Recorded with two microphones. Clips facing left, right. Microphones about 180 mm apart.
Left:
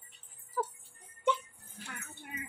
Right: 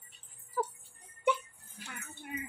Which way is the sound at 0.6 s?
5° right (ahead or behind).